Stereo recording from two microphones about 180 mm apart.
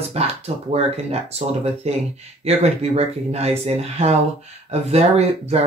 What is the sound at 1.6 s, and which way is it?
Speech, 35° right (ahead or behind).